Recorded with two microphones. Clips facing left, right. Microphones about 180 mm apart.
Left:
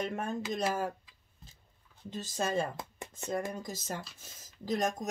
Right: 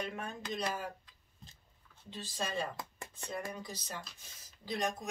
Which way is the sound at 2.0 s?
45° left (ahead or behind).